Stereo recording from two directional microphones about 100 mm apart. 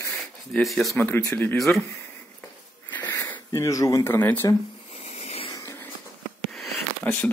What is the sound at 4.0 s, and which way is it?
Speech, 20° left (ahead or behind).